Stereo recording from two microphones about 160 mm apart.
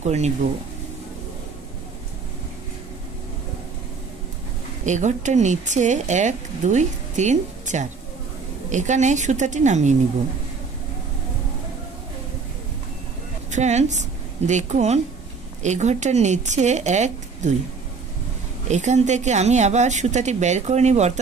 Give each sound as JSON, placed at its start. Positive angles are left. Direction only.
{"t": 0.0, "sound": "speech", "side_deg": -45}
{"t": 4.8, "sound": "speech", "side_deg": -50}
{"t": 13.5, "sound": "a woman's voice", "side_deg": -45}
{"t": 18.7, "sound": "speech", "side_deg": -45}